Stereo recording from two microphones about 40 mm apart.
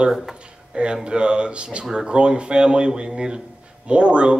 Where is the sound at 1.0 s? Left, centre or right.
Right.